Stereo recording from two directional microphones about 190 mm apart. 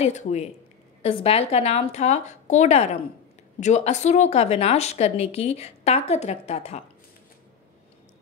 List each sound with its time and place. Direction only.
0.0 s speech: 35° left (ahead or behind)